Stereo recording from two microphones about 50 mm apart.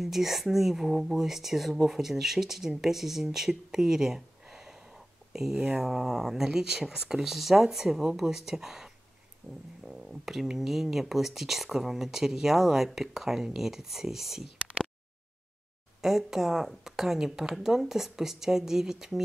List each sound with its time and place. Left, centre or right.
0.0 s speech: centre
9.4 s a sound: right
9.8 s speech: centre
16.0 s speech: centre